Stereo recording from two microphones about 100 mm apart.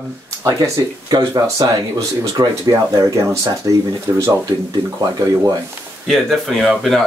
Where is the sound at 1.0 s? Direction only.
40° right (ahead or behind).